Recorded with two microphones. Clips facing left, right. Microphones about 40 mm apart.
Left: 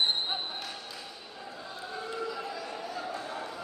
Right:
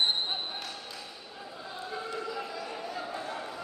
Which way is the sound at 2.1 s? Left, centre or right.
Centre.